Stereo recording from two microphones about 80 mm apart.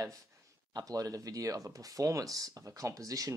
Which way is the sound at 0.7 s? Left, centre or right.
Right.